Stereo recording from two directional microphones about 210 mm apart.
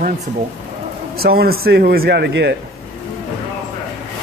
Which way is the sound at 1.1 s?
45° right (ahead or behind).